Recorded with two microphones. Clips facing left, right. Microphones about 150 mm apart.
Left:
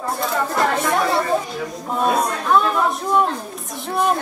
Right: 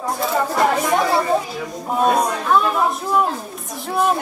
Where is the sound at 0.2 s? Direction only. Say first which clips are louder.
Right 2 dB; centre (ahead or behind).